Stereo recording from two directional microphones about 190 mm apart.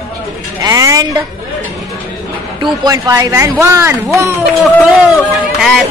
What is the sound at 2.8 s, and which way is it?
A man's voice, 20° right (ahead or behind).